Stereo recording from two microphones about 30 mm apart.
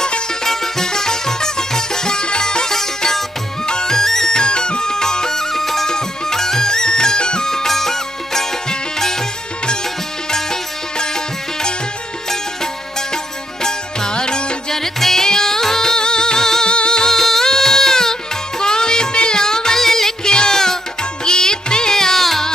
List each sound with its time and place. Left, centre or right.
0.4 s music: centre
4.4 s music: left
7.4 s music: centre
10.3 s music: centre
13.1 s music: left
14.7 s music: centre
16.6 s music: left
17.1 s music: centre
21.9 s music: centre